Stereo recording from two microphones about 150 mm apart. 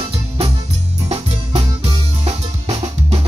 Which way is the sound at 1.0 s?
45° right (ahead or behind).